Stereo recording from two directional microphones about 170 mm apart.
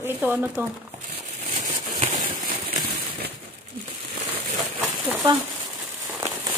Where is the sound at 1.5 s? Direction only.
35° right (ahead or behind).